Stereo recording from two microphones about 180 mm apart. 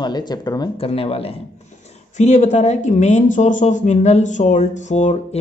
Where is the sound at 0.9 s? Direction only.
30° left (ahead or behind).